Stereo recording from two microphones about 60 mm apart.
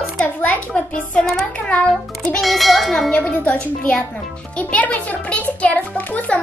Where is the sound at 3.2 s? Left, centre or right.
Left.